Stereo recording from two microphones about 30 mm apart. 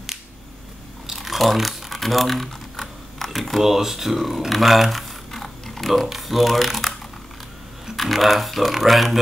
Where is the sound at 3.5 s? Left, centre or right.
Centre.